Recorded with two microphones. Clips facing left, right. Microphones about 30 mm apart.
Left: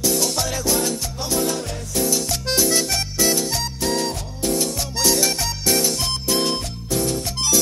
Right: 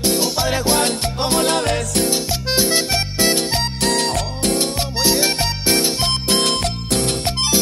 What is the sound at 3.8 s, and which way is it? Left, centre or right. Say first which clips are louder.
Music: right 4 dB; right.